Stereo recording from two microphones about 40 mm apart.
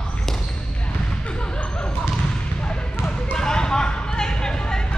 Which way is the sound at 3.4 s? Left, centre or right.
Centre.